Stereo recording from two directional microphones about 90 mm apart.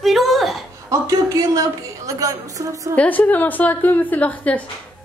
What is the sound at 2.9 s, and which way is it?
A woman's voice, 15° left (ahead or behind).